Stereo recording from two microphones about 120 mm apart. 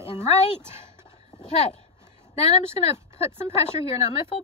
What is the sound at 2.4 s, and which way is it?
Speech, 60° left (ahead or behind).